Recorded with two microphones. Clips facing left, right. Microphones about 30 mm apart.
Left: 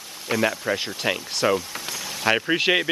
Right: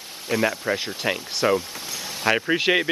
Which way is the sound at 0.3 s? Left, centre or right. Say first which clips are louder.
Even; centre.